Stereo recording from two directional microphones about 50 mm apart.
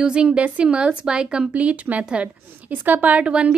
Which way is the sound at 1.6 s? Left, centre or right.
Right.